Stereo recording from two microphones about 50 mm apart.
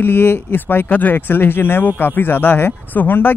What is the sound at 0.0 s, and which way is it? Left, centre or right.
Speech, left.